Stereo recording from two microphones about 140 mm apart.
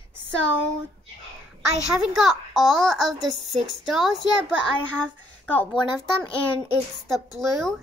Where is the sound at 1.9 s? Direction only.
Centre (ahead or behind).